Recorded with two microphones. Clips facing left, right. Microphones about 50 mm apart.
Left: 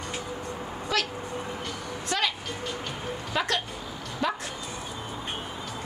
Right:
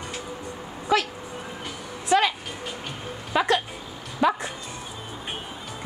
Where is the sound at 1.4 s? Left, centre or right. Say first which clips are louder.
Left 1 dB; centre.